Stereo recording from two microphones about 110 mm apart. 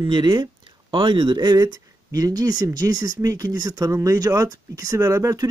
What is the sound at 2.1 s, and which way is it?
Speech, 35° right (ahead or behind).